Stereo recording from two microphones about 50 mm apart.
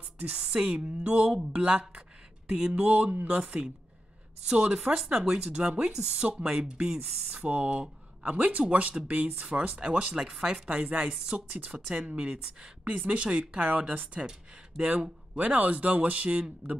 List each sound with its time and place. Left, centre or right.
0.3 s speech: centre
1.5 s a sound: right
2.7 s speech: right
10.7 s speech: right
11.5 s speech: right